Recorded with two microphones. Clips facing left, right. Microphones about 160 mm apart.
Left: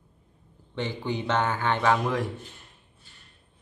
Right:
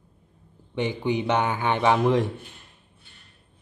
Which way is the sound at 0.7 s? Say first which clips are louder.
Right 5 dB; 15° right (ahead or behind).